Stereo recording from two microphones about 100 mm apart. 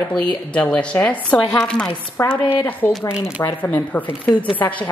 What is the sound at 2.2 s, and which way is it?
Speech, 20° left (ahead or behind).